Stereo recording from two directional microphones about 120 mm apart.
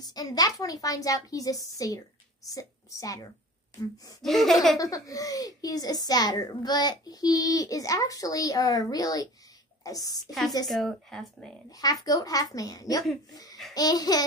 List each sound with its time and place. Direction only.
0.0 s a woman's voice: 35° left (ahead or behind)
4.2 s speech: centre (ahead or behind)
4.7 s a child's voice: 30° left (ahead or behind)
10.7 s speech: centre (ahead or behind)
11.7 s a child's voice: 30° left (ahead or behind)